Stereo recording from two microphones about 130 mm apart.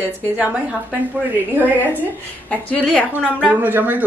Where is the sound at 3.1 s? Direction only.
5° right (ahead or behind).